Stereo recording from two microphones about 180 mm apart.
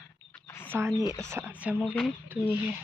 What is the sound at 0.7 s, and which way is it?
Speech, 15° right (ahead or behind).